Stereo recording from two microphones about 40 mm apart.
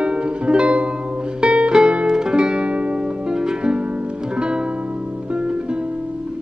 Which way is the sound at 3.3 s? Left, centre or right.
Centre.